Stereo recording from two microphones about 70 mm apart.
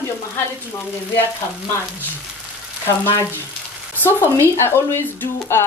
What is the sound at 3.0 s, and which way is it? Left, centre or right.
Speech, left.